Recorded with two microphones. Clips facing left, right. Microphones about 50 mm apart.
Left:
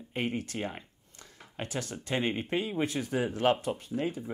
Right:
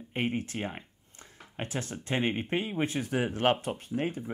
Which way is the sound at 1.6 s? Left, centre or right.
Right.